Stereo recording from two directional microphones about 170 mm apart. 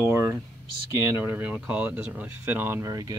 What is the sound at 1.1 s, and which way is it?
Speech, 10° right (ahead or behind).